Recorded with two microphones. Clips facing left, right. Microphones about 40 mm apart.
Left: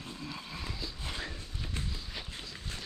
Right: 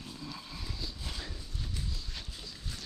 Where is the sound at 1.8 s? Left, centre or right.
Left.